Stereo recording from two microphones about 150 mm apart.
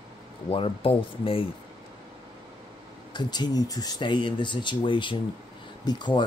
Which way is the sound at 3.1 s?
30° left (ahead or behind).